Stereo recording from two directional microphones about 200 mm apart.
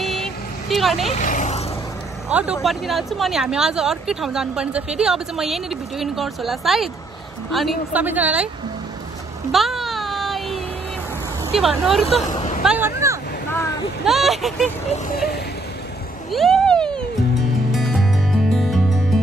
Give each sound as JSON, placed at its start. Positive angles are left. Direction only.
{"t": 0.0, "sound": "vehicle", "side_deg": 0}
{"t": 1.1, "sound": "vehicle", "side_deg": 40}
{"t": 2.2, "sound": "a woman's voice", "side_deg": -5}
{"t": 9.5, "sound": "a sound", "side_deg": 0}
{"t": 11.5, "sound": "speech", "side_deg": 0}
{"t": 12.1, "sound": "hubbub", "side_deg": 35}
{"t": 12.6, "sound": "speech", "side_deg": -10}
{"t": 14.0, "sound": "speech", "side_deg": 0}
{"t": 16.3, "sound": "a sound", "side_deg": 0}
{"t": 17.7, "sound": "music", "side_deg": 0}